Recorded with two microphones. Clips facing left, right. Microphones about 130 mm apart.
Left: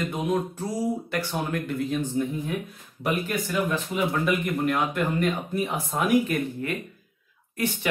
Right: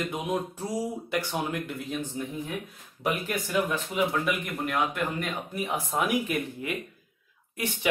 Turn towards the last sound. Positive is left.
turn(degrees=-15)  # may be behind; listen again after turning